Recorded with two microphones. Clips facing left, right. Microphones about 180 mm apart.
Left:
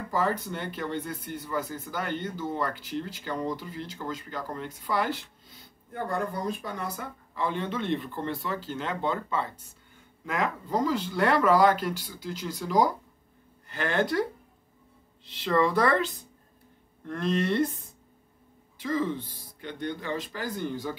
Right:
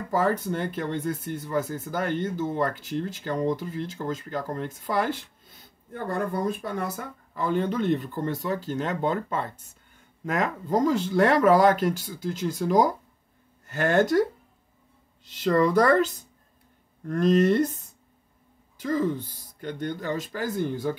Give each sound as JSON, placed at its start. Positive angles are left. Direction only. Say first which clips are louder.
{"t": 0.1, "sound": "speech", "louder": "right 4 dB", "side_deg": -50}
{"t": 15.2, "sound": "speech", "louder": "right 3 dB", "side_deg": -45}
{"t": 18.8, "sound": "speech", "louder": "right 3 dB", "side_deg": -45}